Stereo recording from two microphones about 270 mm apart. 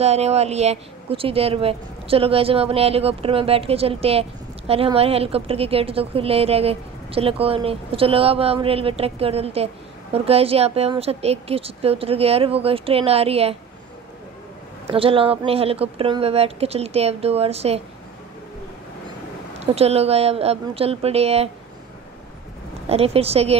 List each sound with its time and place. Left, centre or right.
0.0 s speech: right
14.9 s speech: centre
19.6 s speech: right
22.8 s speech: right